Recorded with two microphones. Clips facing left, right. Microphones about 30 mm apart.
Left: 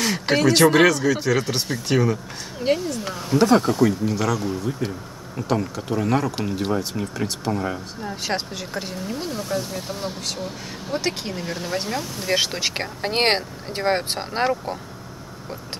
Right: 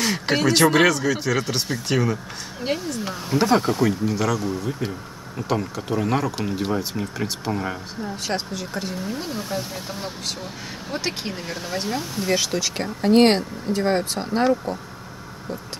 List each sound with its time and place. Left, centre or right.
0.0 s speech: centre
8.0 s speech: centre
9.1 s speech: centre
12.5 s speech: left